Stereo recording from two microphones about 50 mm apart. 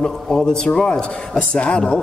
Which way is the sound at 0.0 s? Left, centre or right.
Centre.